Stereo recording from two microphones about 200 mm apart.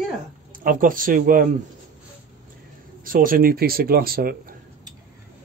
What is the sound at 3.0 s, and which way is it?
Speech, 45° right (ahead or behind).